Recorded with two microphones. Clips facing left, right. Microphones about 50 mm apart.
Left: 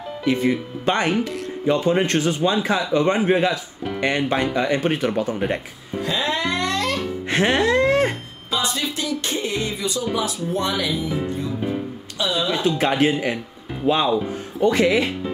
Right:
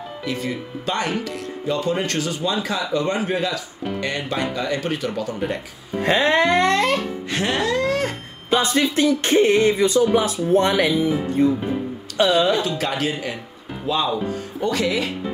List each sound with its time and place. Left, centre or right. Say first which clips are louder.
0.2 s speech: left 7 dB; left
6.0 s music: right 6 dB; right
7.2 s music: left 5 dB; left
8.7 s speech: right 7 dB; right
12.6 s speech: left 5 dB; left